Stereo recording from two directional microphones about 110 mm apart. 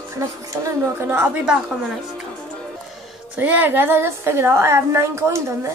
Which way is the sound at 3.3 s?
15° right (ahead or behind).